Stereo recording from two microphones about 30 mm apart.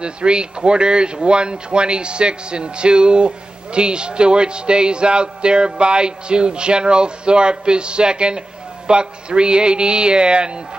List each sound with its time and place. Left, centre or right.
0.0 s speech: right